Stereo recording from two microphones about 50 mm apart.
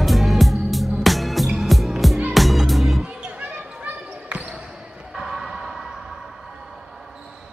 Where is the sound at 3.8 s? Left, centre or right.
Right.